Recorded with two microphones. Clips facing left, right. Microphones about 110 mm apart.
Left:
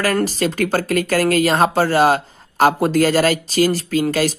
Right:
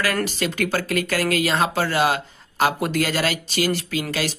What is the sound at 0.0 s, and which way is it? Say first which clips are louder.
Speech: left 5 dB; 40° left (ahead or behind).